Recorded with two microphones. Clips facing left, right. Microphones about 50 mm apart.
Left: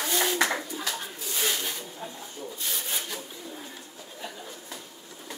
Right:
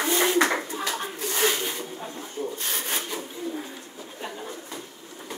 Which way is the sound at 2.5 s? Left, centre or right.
Right.